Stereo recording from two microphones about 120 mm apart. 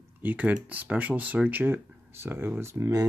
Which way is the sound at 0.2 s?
15° right (ahead or behind).